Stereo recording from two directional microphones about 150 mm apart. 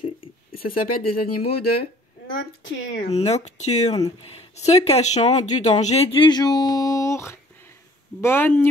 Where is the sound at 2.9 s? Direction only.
45° left (ahead or behind).